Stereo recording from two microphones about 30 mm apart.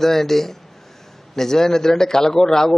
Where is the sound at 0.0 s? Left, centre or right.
Centre.